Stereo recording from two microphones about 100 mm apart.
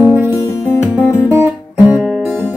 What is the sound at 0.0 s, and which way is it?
Music, 25° right (ahead or behind).